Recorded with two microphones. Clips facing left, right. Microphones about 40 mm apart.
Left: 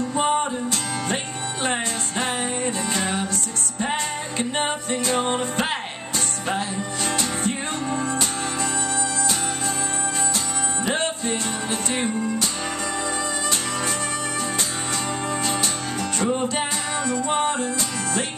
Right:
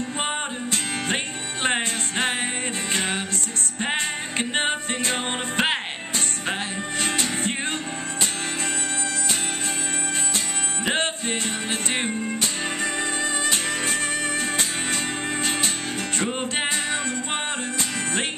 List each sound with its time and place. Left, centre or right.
0.2 s music: right
7.1 s music: right
10.9 s music: right
15.4 s music: right